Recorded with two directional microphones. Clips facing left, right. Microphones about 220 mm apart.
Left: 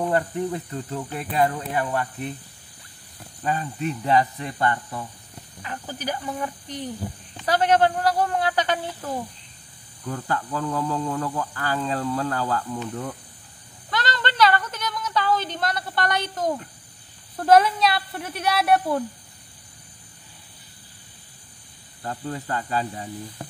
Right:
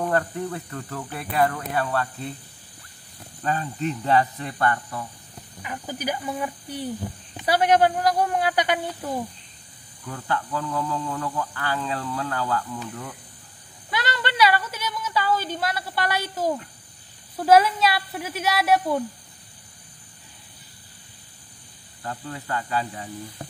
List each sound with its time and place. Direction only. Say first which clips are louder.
0.0 s speech: left 1 dB; 15° left (ahead or behind)
3.4 s speech: even; 10° left (ahead or behind)
5.6 s a man's voice: right 2 dB; 15° right (ahead or behind)
10.0 s speech: left 1 dB; 35° left (ahead or behind)
13.8 s a sound: left 1 dB; 10° right (ahead or behind)
17.4 s speech: even; 5° right (ahead or behind)
22.0 s speech: left 3 dB; 35° left (ahead or behind)